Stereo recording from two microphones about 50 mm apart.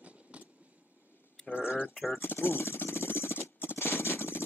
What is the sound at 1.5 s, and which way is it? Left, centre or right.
Speech, left.